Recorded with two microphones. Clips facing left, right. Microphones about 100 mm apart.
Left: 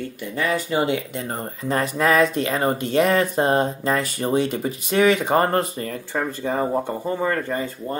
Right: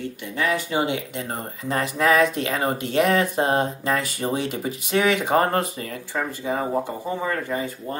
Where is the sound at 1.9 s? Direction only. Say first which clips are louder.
Even; 10° right (ahead or behind).